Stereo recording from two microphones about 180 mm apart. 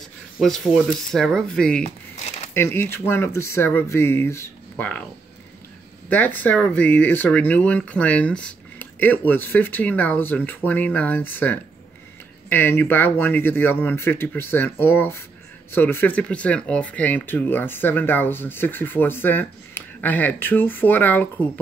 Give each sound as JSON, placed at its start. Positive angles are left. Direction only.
{"t": 0.4, "sound": "speech", "side_deg": 0}
{"t": 1.8, "sound": "a sound", "side_deg": 40}
{"t": 2.5, "sound": "speech", "side_deg": 15}
{"t": 6.0, "sound": "speech", "side_deg": 10}